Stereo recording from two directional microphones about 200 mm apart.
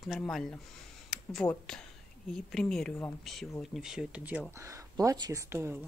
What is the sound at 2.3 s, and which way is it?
Speech, centre (ahead or behind).